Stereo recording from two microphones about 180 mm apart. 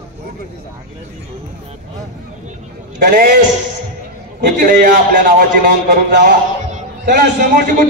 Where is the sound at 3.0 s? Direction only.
55° right (ahead or behind).